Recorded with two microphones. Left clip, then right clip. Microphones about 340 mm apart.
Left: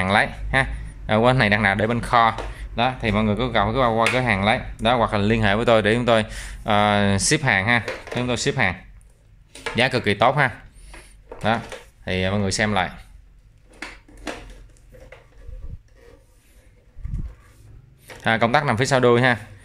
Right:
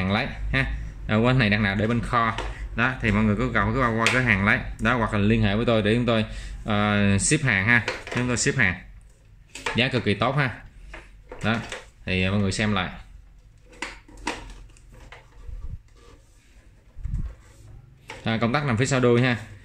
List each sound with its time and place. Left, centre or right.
0.0 s speech: centre
9.8 s speech: centre
18.2 s speech: centre